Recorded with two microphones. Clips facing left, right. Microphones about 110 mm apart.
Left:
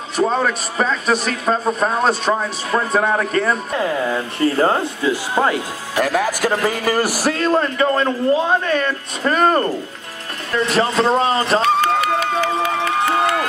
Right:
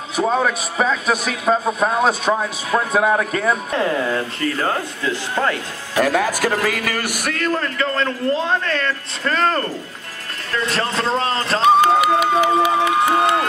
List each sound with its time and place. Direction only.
0.1 s a man's voice: 5° right (ahead or behind)
3.7 s a man's voice: 10° left (ahead or behind)
4.4 s speech: 30° left (ahead or behind)
5.1 s a man's voice: 20° left (ahead or behind)
5.9 s a man's voice: 5° left (ahead or behind)
6.6 s a man's voice: 30° left (ahead or behind); by 11.6 s 10° left (ahead or behind)
11.6 s run: 10° right (ahead or behind)